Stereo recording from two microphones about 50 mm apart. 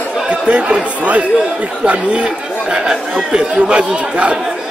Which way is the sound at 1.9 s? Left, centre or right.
Right.